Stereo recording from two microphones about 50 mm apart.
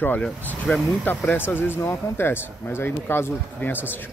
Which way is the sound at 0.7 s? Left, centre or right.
Centre.